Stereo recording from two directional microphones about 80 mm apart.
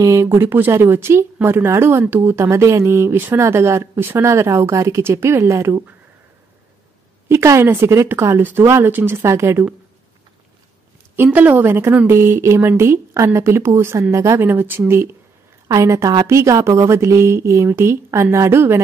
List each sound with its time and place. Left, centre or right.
0.0 s speech: right
7.2 s speech: right
11.3 s speech: right
14.4 s speech: right
15.7 s a woman's voice: right